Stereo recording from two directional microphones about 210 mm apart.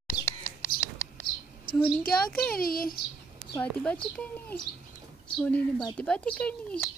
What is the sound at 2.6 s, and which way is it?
Speech, 45° left (ahead or behind).